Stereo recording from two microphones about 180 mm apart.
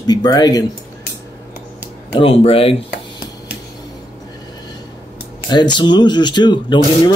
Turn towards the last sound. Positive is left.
turn(degrees=25)  # may be behind; listen again after turning